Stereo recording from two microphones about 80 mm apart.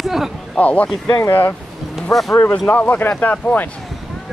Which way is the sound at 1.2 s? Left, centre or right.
Left.